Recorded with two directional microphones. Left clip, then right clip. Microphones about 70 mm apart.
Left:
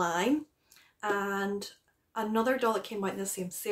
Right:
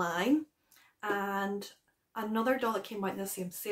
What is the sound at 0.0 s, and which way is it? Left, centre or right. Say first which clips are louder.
Speech: left 2 dB; left.